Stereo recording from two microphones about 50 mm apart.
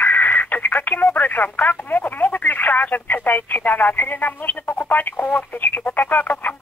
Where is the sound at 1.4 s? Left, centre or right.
Left.